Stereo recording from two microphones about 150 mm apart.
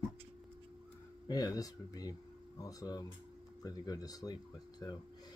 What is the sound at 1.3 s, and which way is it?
Speech, 25° left (ahead or behind).